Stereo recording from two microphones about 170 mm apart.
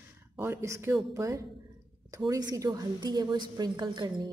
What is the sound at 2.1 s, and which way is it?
A woman's voice, 20° right (ahead or behind).